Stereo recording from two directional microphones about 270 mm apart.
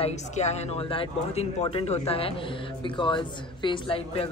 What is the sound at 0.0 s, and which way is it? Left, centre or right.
Speech, left.